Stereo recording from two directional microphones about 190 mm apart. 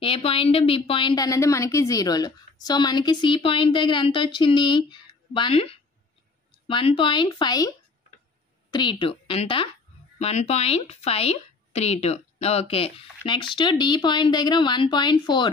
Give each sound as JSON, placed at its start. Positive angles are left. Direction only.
{"t": 0.0, "sound": "a woman's voice", "side_deg": 30}